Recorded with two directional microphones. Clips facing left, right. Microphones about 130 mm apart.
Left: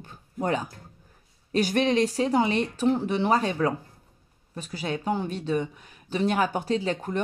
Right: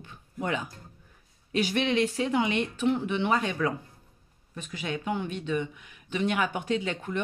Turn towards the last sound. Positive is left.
turn(degrees=40)  # may be behind; listen again after turning